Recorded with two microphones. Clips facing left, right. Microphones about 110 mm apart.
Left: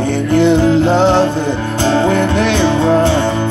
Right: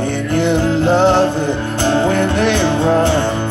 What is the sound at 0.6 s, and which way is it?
Music, 15° left (ahead or behind).